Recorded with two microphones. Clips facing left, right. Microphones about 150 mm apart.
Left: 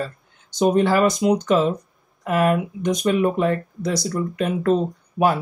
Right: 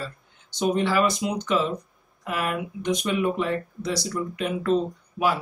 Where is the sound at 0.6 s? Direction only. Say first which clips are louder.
Left 5 dB; 45° left (ahead or behind).